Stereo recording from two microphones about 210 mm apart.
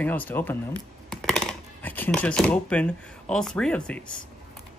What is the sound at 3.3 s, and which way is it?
Speech, 5° left (ahead or behind).